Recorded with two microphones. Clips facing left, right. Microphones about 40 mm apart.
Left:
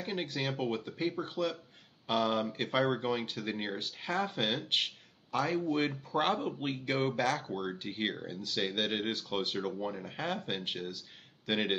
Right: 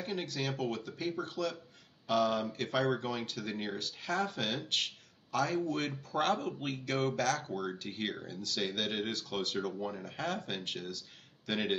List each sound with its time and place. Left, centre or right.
0.0 s speech: left